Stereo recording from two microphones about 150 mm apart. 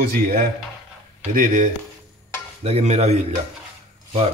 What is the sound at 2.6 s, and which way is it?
Dishes, 45° right (ahead or behind).